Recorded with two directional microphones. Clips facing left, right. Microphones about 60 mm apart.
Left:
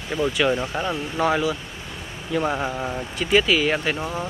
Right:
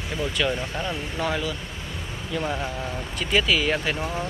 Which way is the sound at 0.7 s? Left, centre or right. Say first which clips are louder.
Left 4 dB; centre.